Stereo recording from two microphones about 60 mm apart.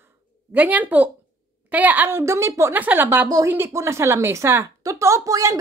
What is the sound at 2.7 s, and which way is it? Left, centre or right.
Speech, right.